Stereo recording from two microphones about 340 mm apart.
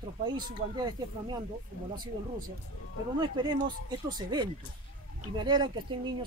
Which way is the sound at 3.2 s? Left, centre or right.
Centre.